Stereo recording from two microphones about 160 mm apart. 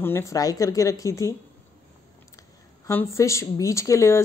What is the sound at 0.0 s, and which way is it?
A woman's voice, 15° left (ahead or behind).